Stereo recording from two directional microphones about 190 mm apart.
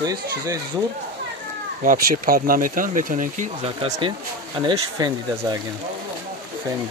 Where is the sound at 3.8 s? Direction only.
30° right (ahead or behind).